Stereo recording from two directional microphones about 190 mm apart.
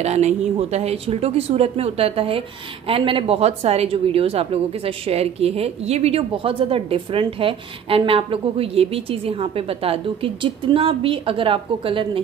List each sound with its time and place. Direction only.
0.0 s a woman's voice: 35° right (ahead or behind)